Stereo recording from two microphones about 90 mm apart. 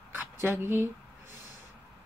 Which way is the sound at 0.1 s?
25° right (ahead or behind).